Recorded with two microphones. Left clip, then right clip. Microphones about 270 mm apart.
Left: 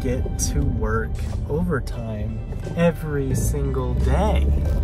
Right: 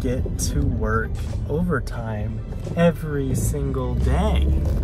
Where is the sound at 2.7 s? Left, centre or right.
Centre.